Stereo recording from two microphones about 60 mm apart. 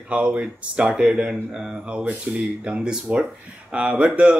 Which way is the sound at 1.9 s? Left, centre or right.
Centre.